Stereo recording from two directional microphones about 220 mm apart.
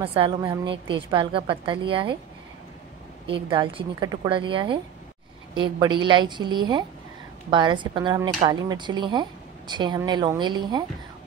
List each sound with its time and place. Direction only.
0.0 s a woman's voice: 25° right (ahead or behind)
3.3 s a woman's voice: 20° right (ahead or behind)